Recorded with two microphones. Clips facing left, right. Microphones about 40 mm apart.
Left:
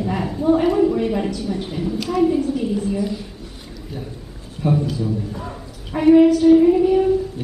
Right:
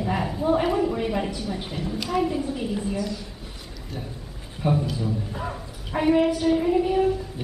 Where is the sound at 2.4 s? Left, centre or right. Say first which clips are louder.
Left 7 dB; centre.